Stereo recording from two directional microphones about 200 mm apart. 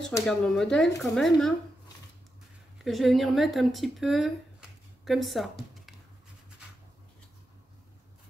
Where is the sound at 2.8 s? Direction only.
Centre (ahead or behind).